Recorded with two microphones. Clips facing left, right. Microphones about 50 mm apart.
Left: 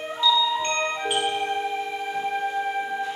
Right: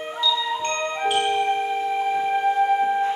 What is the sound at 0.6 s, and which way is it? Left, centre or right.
Glockenspiel, centre.